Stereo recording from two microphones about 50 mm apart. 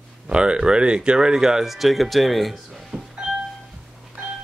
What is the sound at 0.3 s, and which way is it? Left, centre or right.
Speech, centre.